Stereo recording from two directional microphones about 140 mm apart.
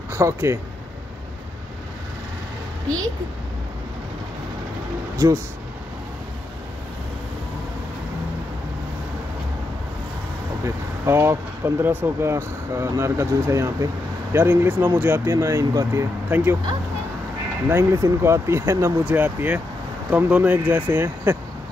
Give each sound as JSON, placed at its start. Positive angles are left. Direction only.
{"t": 0.1, "sound": "speech", "side_deg": -20}
{"t": 10.6, "sound": "speech", "side_deg": -20}
{"t": 17.6, "sound": "speech", "side_deg": -20}